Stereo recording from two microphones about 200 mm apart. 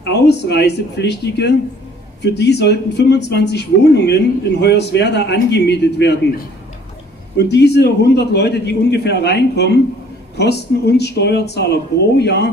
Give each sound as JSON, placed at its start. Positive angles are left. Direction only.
{"t": 0.0, "sound": "speech", "side_deg": 55}